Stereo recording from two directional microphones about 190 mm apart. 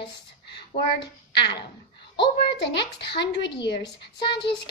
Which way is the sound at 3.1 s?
65° left (ahead or behind).